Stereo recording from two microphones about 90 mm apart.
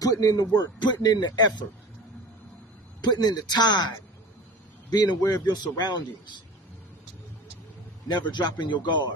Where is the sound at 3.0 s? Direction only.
50° left (ahead or behind).